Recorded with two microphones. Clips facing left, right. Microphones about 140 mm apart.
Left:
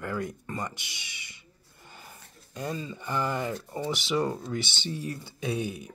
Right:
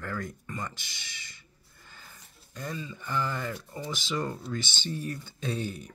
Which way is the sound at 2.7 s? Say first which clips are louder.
Left 3 dB; 30° left (ahead or behind).